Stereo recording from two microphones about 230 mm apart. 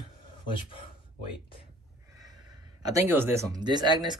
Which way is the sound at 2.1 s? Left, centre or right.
Centre.